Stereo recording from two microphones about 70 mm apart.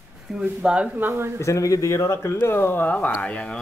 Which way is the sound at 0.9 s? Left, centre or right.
Right.